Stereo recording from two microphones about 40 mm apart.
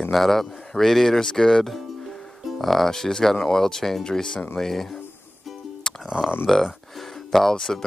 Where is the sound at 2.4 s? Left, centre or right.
Centre.